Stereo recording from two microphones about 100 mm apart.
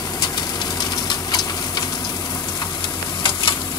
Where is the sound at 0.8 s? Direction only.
45° left (ahead or behind).